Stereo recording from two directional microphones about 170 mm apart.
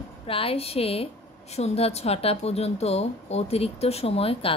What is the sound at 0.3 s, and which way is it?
Speech, 35° left (ahead or behind).